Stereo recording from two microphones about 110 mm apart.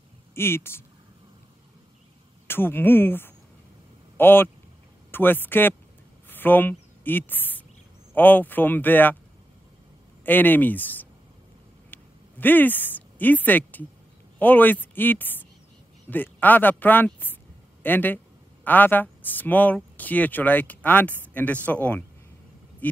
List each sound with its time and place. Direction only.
0.3 s speech: 20° left (ahead or behind)
2.4 s speech: 20° left (ahead or behind)
6.2 s a sound: 15° left (ahead or behind)
8.1 s speech: 15° left (ahead or behind)
10.2 s speech: 15° left (ahead or behind)
11.9 s a sound: 15° left (ahead or behind)
14.4 s speech: 15° left (ahead or behind)